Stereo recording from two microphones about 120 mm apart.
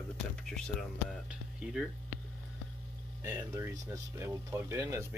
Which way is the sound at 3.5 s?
25° right (ahead or behind).